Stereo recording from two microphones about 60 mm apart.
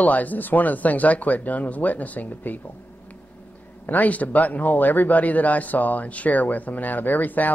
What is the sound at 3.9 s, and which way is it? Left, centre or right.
Speech, left.